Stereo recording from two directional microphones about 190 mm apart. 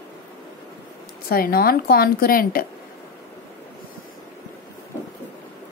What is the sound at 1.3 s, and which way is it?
A woman's voice, 50° left (ahead or behind).